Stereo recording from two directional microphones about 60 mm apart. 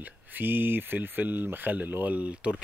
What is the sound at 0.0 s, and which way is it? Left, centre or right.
Speech, right.